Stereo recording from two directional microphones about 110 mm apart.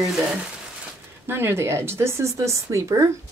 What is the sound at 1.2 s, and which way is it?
Speech, 20° right (ahead or behind).